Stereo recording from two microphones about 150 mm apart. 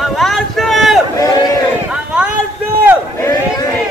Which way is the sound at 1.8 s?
5° right (ahead or behind).